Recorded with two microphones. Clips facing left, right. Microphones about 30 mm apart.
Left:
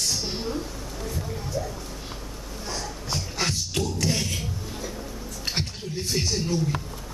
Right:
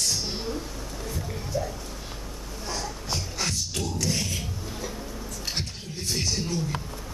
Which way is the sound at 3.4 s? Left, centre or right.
Centre.